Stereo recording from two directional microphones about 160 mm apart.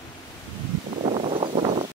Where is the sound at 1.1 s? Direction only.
35° right (ahead or behind).